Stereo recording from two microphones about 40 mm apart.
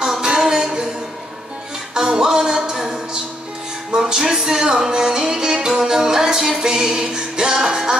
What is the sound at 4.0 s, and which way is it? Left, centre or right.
Music, centre.